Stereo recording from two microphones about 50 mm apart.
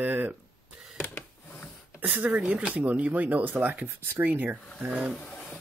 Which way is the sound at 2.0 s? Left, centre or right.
Right.